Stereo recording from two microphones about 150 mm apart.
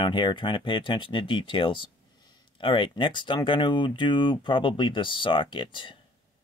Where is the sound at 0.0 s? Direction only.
30° left (ahead or behind).